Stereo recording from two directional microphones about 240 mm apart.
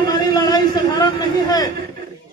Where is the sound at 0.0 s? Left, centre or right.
Centre.